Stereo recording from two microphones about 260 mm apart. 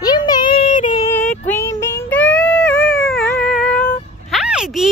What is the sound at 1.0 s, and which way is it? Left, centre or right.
Child singing, centre.